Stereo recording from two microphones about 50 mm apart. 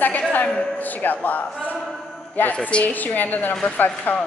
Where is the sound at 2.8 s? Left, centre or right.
Left.